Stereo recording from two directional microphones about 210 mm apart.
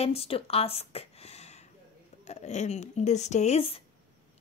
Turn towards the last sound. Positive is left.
turn(degrees=30)  # may be behind; listen again after turning